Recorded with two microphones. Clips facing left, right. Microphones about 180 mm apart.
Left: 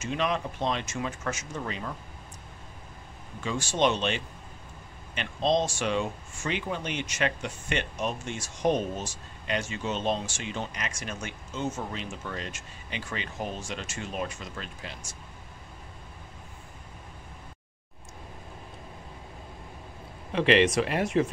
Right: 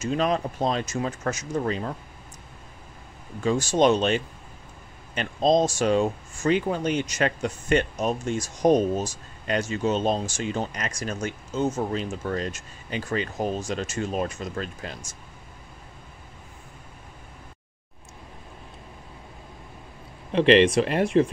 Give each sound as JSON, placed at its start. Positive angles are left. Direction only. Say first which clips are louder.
{"t": 0.0, "sound": "speech", "louder": "right 5 dB", "side_deg": -40}
{"t": 3.4, "sound": "speech", "louder": "right 6 dB", "side_deg": -40}
{"t": 20.3, "sound": "speech", "louder": "right 5 dB", "side_deg": -30}